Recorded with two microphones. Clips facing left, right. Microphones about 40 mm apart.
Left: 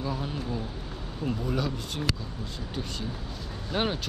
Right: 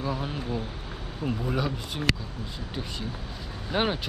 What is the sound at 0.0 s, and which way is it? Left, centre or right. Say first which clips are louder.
Speech: right 1 dB; centre.